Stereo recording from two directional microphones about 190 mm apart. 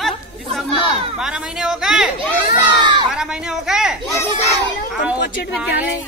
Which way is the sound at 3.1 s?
5° right (ahead or behind).